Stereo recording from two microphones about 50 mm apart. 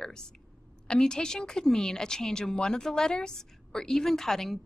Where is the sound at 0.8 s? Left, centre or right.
Centre.